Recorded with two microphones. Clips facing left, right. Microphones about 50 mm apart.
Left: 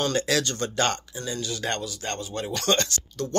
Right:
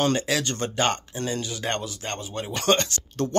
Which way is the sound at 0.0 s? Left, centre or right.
Centre.